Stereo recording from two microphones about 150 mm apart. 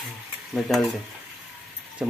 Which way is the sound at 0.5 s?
Centre (ahead or behind).